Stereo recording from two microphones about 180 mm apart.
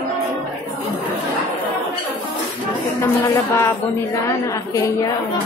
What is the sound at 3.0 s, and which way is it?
A woman's voice, 15° left (ahead or behind).